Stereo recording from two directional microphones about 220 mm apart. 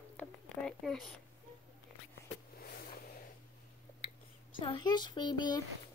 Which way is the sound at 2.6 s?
45° left (ahead or behind).